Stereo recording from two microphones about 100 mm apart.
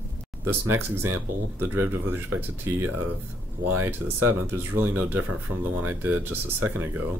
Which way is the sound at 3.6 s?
20° right (ahead or behind).